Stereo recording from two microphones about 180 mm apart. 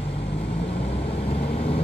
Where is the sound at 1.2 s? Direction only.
35° left (ahead or behind).